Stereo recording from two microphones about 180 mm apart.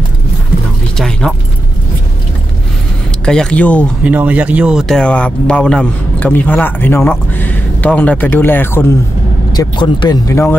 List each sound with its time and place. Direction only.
0.9 s keys jangling: 5° left (ahead or behind)
3.3 s speech: 5° left (ahead or behind)
4.0 s speech: 10° right (ahead or behind); by 8.8 s 10° left (ahead or behind)
9.5 s speech: 25° left (ahead or behind)